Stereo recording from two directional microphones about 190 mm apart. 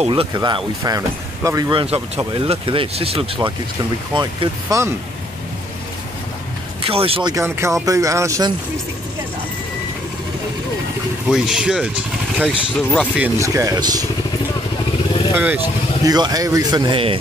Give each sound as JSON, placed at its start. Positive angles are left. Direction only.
{"t": 0.0, "sound": "speech", "side_deg": -30}
{"t": 6.8, "sound": "speech", "side_deg": -30}
{"t": 7.3, "sound": "speech", "side_deg": -15}
{"t": 11.2, "sound": "speech", "side_deg": -5}
{"t": 13.2, "sound": "speech", "side_deg": -15}
{"t": 15.3, "sound": "speech", "side_deg": -10}